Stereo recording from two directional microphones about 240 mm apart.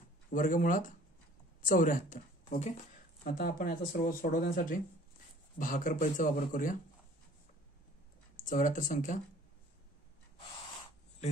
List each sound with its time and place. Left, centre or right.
0.3 s speech: left
8.5 s speech: left